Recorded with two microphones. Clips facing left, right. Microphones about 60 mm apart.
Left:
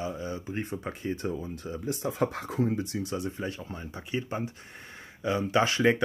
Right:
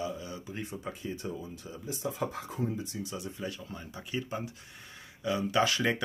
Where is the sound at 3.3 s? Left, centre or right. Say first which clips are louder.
Left 3 dB; left.